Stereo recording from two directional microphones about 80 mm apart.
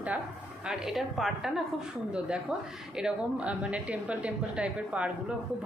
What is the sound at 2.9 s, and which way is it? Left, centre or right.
A woman's voice, centre.